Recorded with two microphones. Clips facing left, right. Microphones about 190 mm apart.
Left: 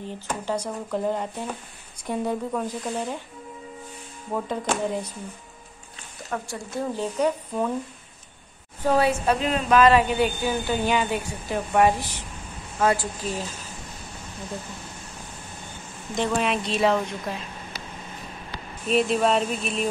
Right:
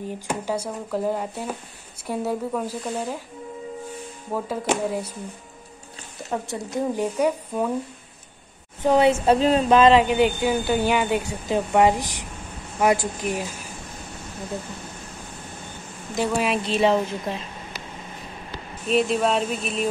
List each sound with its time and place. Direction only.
0.3 s speech: 10° right (ahead or behind)
4.3 s a woman's voice: 5° right (ahead or behind)
6.3 s a woman's voice: 20° right (ahead or behind)
8.8 s a woman's voice: 20° right (ahead or behind)
16.2 s speech: 5° right (ahead or behind)
18.9 s speech: centre (ahead or behind)